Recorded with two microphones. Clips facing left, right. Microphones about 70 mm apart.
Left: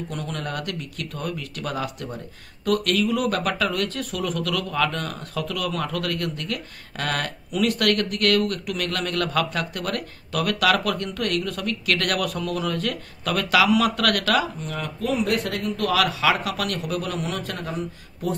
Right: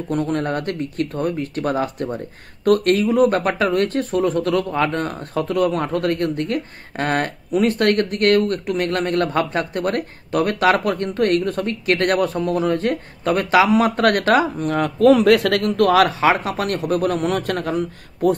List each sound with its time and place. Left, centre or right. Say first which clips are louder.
0.1 s speech: right 13 dB; right
14.6 s speech: right 13 dB; right
15.7 s a man's voice: right 7 dB; right